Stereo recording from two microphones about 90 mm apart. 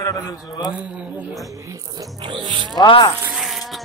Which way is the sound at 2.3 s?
70° right (ahead or behind).